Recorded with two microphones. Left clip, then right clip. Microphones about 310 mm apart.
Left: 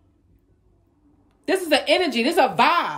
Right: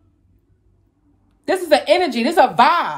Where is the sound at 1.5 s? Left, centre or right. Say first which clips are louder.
Right 4 dB; centre.